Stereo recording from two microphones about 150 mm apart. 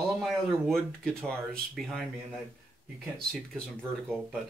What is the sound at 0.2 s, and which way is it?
Speech, centre (ahead or behind).